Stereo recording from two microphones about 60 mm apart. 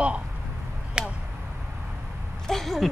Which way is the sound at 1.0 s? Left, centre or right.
Centre.